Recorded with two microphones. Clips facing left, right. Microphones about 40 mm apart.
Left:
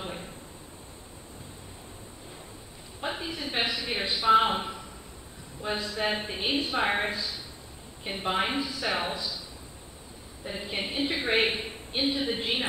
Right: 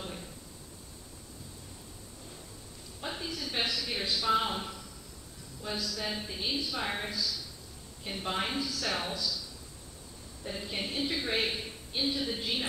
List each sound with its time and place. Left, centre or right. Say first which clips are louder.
0.0 s a sound: left 4 dB; left
3.0 s a woman's voice: left 4 dB; left
10.4 s a woman's voice: left 3 dB; left